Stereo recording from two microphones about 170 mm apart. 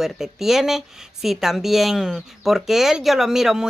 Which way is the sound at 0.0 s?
Centre (ahead or behind).